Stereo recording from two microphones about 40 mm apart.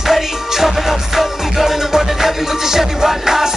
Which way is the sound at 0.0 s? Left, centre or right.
Centre.